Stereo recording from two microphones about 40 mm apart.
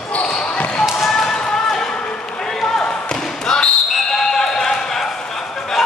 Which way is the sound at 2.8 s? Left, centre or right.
Left.